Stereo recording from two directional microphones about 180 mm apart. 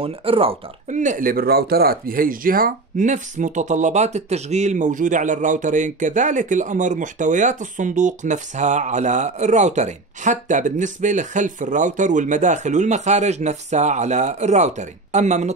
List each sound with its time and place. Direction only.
0.0 s speech: 30° right (ahead or behind)